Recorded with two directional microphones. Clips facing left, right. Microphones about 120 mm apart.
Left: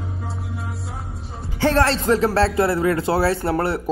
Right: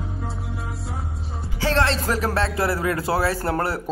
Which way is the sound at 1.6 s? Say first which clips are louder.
Left 4 dB; 55° left (ahead or behind).